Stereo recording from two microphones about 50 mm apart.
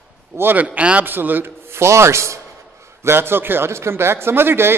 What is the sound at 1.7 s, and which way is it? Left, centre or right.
Speech, right.